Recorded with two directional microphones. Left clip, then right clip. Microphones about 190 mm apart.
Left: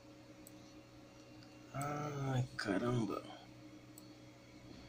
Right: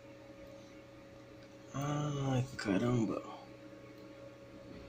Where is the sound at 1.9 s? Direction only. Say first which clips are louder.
Right 5 dB; 20° right (ahead or behind).